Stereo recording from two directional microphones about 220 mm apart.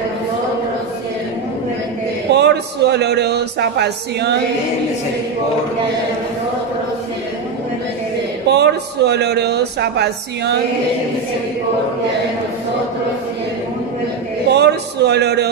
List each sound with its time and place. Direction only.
2.3 s speech: 50° right (ahead or behind)
8.5 s speech: 50° right (ahead or behind)
14.5 s a man's voice: 50° right (ahead or behind)